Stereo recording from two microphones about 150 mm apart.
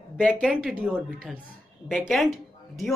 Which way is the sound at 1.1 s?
Centre (ahead or behind).